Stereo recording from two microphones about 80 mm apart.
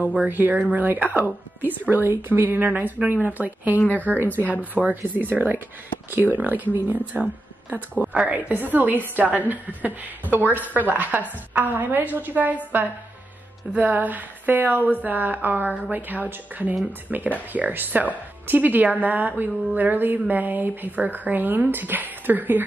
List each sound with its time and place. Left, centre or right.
0.0 s a woman's voice: centre
13.7 s a woman's voice: centre